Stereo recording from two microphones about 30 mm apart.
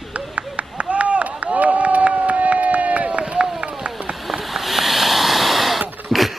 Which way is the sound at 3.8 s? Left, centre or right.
Right.